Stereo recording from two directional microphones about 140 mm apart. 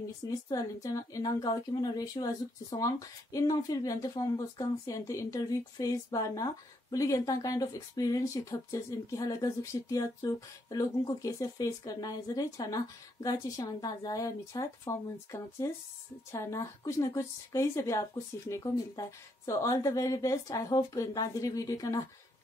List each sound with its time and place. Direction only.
0.3 s a woman's voice: 25° left (ahead or behind)